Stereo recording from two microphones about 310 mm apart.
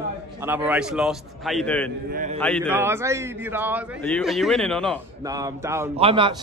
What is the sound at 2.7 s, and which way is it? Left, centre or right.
A man's voice, centre.